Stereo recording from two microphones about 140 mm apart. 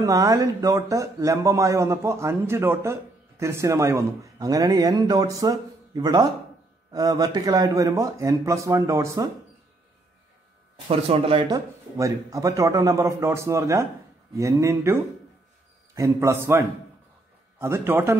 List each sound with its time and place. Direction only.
0.0 s speech: 25° right (ahead or behind)
10.9 s speech: 45° right (ahead or behind)
11.4 s a man's voice: 25° right (ahead or behind)